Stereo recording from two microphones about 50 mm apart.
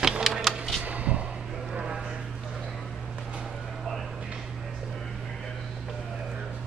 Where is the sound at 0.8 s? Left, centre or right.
Right.